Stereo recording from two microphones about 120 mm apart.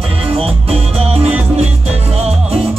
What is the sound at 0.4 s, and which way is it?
Music, 55° right (ahead or behind).